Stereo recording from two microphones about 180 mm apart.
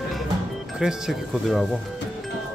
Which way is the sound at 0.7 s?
5° right (ahead or behind).